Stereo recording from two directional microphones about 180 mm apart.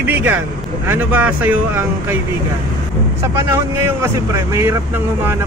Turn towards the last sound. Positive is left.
turn(degrees=-15)  # may be behind; listen again after turning